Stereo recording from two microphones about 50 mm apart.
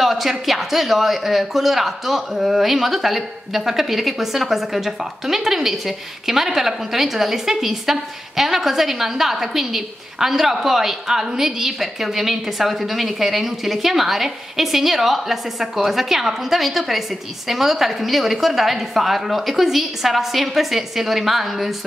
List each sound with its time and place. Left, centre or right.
0.0 s speech: centre